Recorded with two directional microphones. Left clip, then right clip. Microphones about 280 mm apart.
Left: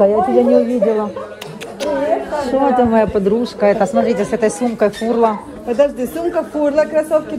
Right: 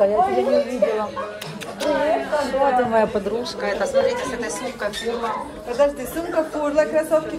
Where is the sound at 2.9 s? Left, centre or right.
Centre.